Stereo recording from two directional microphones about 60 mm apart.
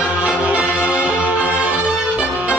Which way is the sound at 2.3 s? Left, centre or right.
Right.